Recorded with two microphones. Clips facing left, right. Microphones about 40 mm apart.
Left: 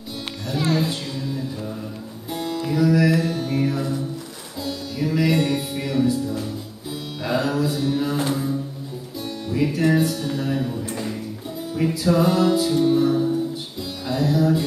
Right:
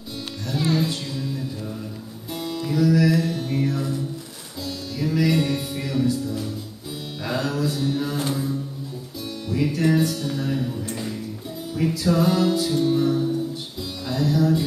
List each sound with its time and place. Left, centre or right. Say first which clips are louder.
0.5 s a sound: left 1 dB; centre
2.3 s music: left 1 dB; centre
3.3 s mantra: left 2 dB; centre
3.6 s music: left 2 dB; centre